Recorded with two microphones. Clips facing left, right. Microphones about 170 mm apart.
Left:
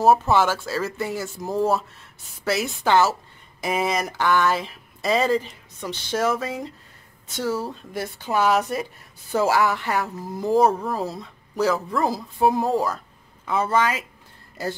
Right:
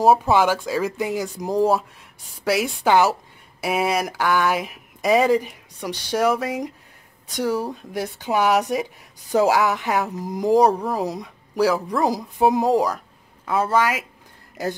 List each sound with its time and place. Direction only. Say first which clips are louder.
0.0 s speech: right 1 dB; 10° right (ahead or behind)